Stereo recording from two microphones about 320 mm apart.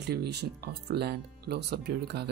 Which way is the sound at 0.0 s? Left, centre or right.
Right.